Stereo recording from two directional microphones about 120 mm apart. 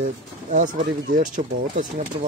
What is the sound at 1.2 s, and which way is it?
Speech, 90° right.